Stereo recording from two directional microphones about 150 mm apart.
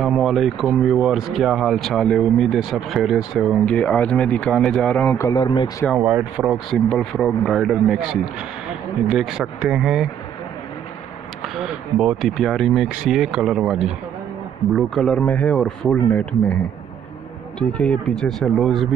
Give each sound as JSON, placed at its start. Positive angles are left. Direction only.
{"t": 0.0, "sound": "speech", "side_deg": 0}
{"t": 5.1, "sound": "speech", "side_deg": 20}
{"t": 5.9, "sound": "speech", "side_deg": -10}
{"t": 11.4, "sound": "speech", "side_deg": 0}
{"t": 17.6, "sound": "speech", "side_deg": 5}